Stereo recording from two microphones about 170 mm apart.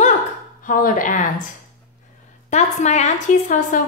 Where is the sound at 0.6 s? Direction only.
55° left (ahead or behind).